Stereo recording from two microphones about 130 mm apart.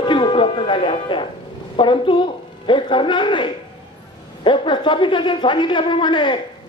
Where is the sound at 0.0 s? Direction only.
40° left (ahead or behind).